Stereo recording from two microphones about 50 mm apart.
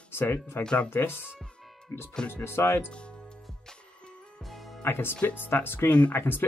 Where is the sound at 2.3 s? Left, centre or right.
Left.